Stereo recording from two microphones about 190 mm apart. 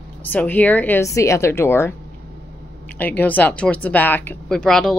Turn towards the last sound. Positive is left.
turn(degrees=5)  # may be behind; listen again after turning